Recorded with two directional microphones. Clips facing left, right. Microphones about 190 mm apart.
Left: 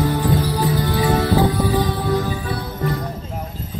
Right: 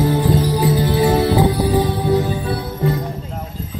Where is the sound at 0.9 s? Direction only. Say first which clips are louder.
Right 3 dB; 25° right (ahead or behind).